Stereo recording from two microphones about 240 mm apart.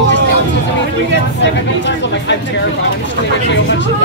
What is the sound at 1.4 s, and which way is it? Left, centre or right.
Speech, left.